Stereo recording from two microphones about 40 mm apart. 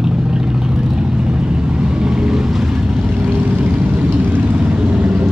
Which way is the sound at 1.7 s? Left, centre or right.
Right.